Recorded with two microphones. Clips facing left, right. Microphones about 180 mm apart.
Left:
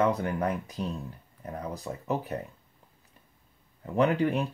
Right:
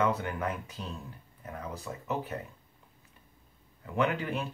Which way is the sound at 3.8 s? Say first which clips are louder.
Left 6 dB; 35° left (ahead or behind).